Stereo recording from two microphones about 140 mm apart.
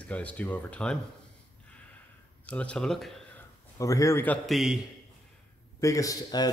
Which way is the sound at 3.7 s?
20° left (ahead or behind).